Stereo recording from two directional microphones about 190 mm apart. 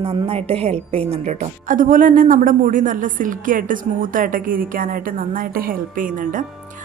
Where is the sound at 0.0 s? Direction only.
30° right (ahead or behind).